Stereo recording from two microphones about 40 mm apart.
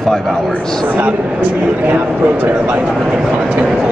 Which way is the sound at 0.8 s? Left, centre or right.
Right.